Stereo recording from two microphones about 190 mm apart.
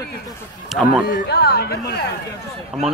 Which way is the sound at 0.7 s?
Centre (ahead or behind).